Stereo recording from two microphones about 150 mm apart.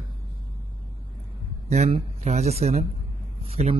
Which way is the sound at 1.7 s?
50° right (ahead or behind).